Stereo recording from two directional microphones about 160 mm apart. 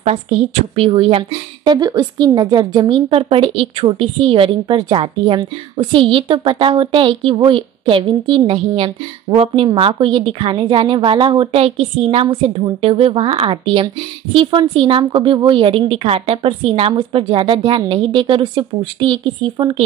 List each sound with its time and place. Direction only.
0.0 s a woman's voice: 40° right (ahead or behind)
1.8 s a woman's voice: 25° right (ahead or behind)